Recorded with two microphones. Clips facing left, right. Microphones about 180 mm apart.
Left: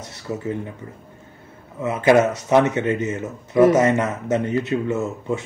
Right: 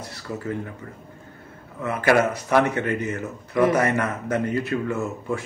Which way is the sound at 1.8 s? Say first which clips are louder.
Left 4 dB; 20° left (ahead or behind).